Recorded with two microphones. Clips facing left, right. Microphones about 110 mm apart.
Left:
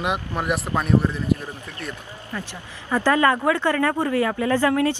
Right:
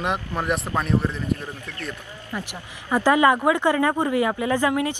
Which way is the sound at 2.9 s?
15° right (ahead or behind).